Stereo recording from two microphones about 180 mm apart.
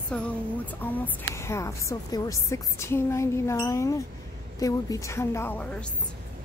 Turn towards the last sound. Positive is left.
turn(degrees=5)  # may be behind; listen again after turning